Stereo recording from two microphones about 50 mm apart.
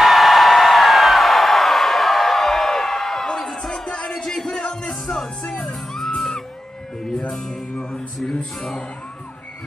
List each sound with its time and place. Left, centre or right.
0.0 s music: centre
8.5 s music: centre